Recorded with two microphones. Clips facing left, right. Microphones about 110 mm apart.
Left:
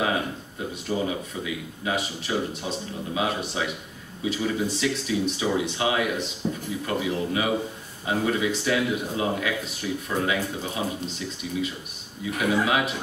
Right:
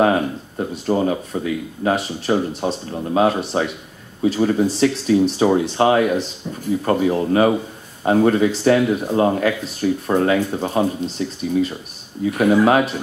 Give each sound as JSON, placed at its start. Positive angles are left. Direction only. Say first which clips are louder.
{"t": 0.0, "sound": "speech", "louder": "right 9 dB", "side_deg": -45}
{"t": 6.4, "sound": "speech", "louder": "left 2 dB", "side_deg": 10}
{"t": 6.8, "sound": "speech", "louder": "right 9 dB", "side_deg": -45}